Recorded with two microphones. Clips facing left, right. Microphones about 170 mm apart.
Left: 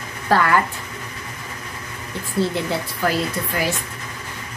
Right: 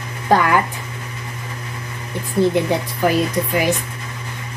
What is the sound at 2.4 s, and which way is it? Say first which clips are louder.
A woman's voice: right 7 dB; 15° right (ahead or behind).